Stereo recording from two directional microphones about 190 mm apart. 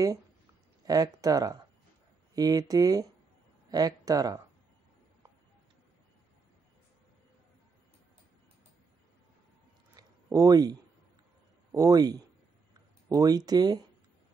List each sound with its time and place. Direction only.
0.8 s speech: 20° right (ahead or behind)
9.9 s a sound: 20° right (ahead or behind)
11.7 s speech: 20° right (ahead or behind)